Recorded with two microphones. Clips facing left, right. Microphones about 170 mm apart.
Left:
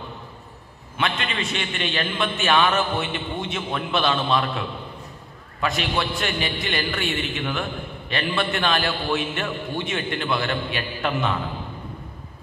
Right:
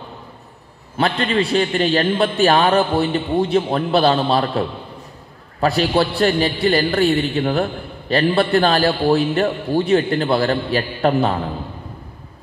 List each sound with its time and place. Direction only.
0.9 s a man's voice: 35° right (ahead or behind)